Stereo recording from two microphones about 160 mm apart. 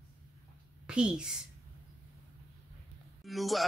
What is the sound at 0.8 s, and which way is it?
Speech, 5° right (ahead or behind).